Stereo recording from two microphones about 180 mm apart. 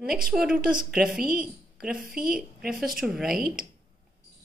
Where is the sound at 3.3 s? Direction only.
55° right (ahead or behind).